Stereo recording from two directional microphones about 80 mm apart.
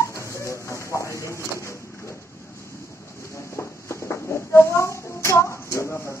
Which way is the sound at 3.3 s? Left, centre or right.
Left.